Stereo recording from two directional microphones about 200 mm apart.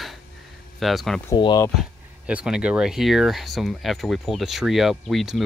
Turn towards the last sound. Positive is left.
turn(degrees=0)  # may be behind; listen again after turning